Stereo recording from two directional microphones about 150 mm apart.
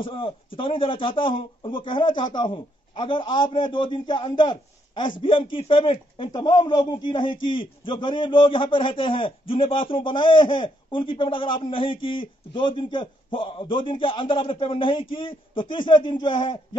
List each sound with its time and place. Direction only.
0.0 s speech: 35° left (ahead or behind)